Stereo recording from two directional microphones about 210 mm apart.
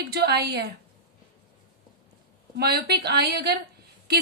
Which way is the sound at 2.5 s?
50° right (ahead or behind).